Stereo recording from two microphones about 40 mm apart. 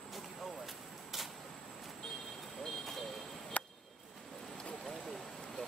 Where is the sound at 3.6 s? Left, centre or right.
Left.